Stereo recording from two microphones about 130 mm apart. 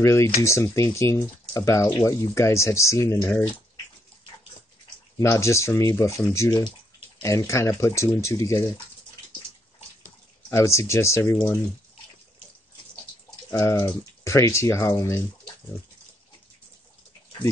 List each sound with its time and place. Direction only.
0.0 s speech: 20° left (ahead or behind)
5.2 s speech: 20° left (ahead or behind)
10.5 s speech: 20° left (ahead or behind)
13.5 s speech: 20° left (ahead or behind)